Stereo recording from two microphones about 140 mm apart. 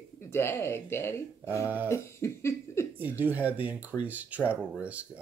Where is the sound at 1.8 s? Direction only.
20° left (ahead or behind).